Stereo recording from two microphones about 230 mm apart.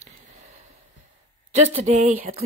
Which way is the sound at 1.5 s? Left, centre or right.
Right.